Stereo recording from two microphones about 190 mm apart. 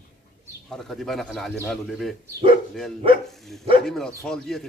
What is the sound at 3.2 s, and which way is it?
Speech, centre (ahead or behind).